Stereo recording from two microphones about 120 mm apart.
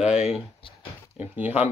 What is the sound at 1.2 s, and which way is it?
Speech, 10° right (ahead or behind).